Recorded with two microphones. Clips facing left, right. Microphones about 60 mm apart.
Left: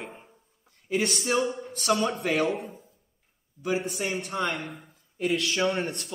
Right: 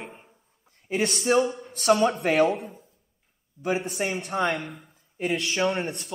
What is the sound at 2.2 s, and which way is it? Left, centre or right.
Speech, right.